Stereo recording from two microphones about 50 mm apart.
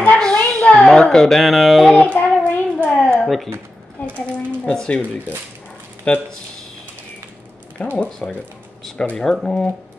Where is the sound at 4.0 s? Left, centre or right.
Left.